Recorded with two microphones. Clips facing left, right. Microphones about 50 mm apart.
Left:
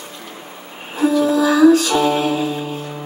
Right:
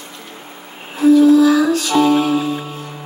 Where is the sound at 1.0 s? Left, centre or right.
Left.